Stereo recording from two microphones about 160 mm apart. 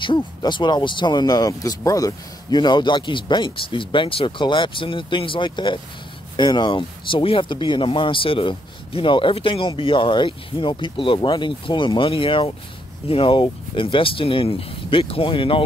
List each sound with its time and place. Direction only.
0.0 s speech: 30° left (ahead or behind)